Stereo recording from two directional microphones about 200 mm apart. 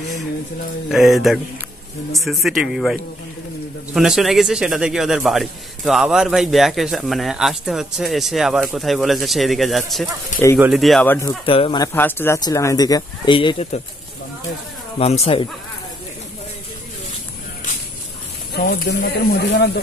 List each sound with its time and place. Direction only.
0.8 s speech: centre (ahead or behind)
11.1 s speech: 15° left (ahead or behind)
11.9 s speech: 10° left (ahead or behind); by 13.7 s 30° left (ahead or behind)
15.0 s speech: 30° left (ahead or behind)
18.5 s speech: 55° left (ahead or behind)